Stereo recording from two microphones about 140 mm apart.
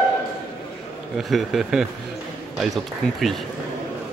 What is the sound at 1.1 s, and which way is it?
Speech, centre (ahead or behind).